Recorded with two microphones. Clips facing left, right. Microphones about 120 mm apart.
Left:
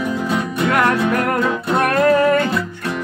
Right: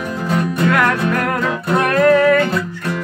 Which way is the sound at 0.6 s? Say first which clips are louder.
Even; 20° left (ahead or behind).